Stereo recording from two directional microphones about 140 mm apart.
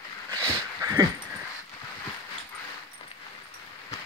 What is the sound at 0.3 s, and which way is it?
Dog, 25° right (ahead or behind).